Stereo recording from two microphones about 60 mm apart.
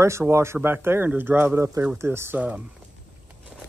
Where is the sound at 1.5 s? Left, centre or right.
Right.